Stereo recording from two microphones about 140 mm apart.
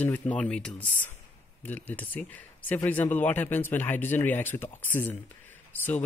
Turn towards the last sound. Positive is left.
turn(degrees=15)  # may be behind; listen again after turning